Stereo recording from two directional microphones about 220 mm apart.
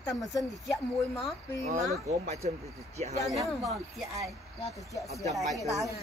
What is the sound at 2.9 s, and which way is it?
Speech, 30° right (ahead or behind).